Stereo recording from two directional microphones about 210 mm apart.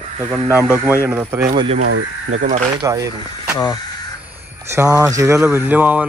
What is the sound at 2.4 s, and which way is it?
Speech, 35° right (ahead or behind).